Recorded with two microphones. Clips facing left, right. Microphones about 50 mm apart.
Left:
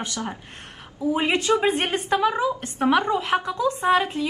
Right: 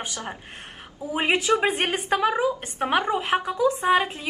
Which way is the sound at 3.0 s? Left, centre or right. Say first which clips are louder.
Left 1 dB; centre.